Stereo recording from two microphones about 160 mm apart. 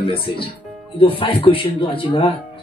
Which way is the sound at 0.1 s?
35° left (ahead or behind).